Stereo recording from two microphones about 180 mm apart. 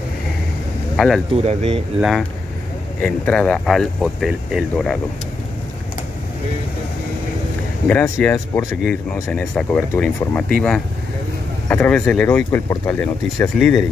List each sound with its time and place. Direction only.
0.9 s speech: centre (ahead or behind)
1.3 s speech: 35° right (ahead or behind)
2.0 s speech: centre (ahead or behind)
7.9 s speech: 10° left (ahead or behind)
11.7 s speech: 5° left (ahead or behind)